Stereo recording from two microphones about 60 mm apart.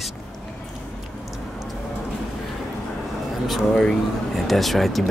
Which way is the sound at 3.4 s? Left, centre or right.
Centre.